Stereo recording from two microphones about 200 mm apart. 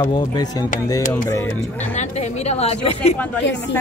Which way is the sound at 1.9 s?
35° left (ahead or behind).